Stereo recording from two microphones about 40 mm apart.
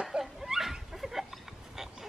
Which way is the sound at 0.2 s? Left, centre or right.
Centre.